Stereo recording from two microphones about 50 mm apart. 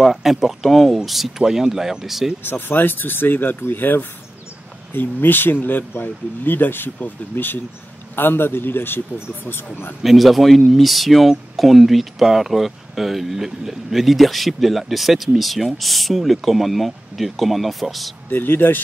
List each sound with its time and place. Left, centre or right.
0.0 s speech: centre
2.4 s speech: left
10.0 s speech: centre
18.3 s speech: left